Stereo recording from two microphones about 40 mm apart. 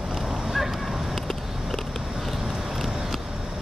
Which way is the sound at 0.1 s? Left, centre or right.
Centre.